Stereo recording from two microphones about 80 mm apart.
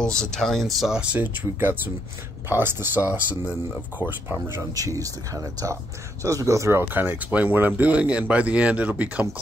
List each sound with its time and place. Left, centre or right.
0.0 s speech: centre
1.1 s speech: right
4.7 s speech: right
6.8 s speech: right